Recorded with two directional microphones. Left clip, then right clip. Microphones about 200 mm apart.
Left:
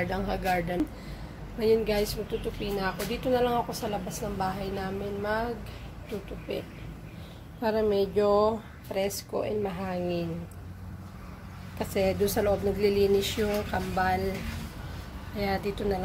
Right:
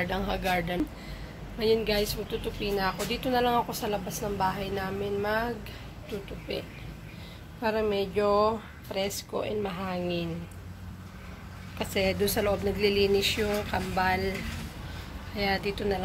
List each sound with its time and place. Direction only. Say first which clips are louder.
0.0 s speech: even; 5° left (ahead or behind)
2.6 s a woman's voice: right 5 dB; 5° right (ahead or behind)
7.6 s speech: left 2 dB; 20° left (ahead or behind)
11.8 s speech: left 1 dB; 10° left (ahead or behind)
15.3 s speech: right 1 dB; 10° left (ahead or behind)